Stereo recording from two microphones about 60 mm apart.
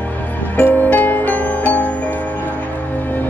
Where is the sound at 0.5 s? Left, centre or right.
Left.